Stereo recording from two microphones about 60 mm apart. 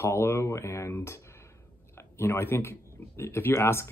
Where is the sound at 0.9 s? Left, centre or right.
Left.